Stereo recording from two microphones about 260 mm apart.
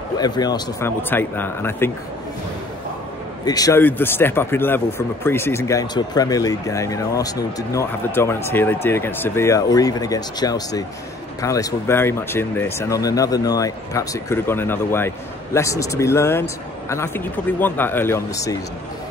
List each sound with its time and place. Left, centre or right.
0.2 s speech: centre
3.4 s speech: centre